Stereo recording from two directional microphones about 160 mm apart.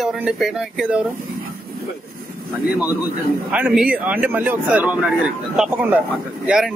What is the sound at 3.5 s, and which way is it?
Speech, 10° right (ahead or behind).